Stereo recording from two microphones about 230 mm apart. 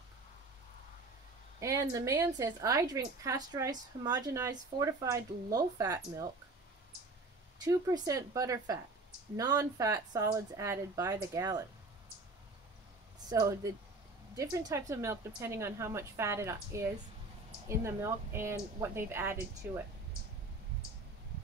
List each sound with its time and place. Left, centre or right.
1.6 s a woman's voice: centre
7.6 s a woman's voice: centre
13.3 s a woman's voice: centre